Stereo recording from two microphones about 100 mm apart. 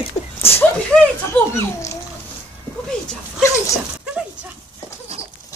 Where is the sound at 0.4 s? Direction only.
25° left (ahead or behind).